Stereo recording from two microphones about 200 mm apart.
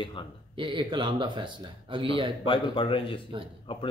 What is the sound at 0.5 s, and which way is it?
Speech, 25° right (ahead or behind).